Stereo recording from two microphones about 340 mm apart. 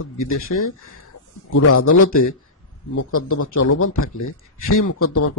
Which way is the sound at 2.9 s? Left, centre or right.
Left.